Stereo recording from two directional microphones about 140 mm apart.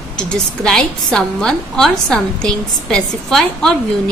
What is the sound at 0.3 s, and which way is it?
A woman's voice, 5° left (ahead or behind).